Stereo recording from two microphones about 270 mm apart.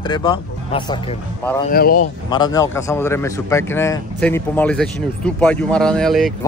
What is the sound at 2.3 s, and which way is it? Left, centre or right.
A man's voice, centre.